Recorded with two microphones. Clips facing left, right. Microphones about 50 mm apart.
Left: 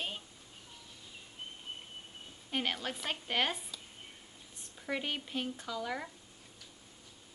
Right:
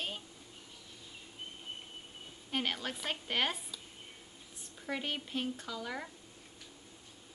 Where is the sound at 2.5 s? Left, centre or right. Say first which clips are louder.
Even; centre.